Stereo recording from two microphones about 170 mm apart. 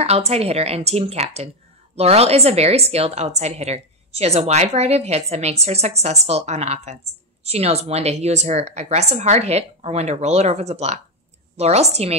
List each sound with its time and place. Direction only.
0.0 s a woman's voice: 40° right (ahead or behind)